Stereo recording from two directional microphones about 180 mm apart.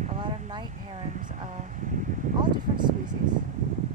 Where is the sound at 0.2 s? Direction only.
30° right (ahead or behind).